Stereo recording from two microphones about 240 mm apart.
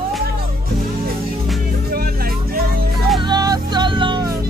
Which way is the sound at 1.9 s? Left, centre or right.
Right.